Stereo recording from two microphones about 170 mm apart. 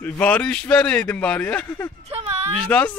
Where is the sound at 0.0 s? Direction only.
10° left (ahead or behind).